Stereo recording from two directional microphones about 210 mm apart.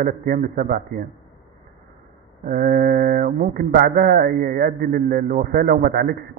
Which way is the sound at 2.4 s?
45° right (ahead or behind).